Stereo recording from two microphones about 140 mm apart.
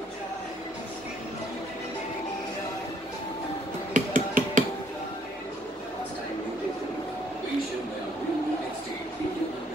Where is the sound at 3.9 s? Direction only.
70° right (ahead or behind).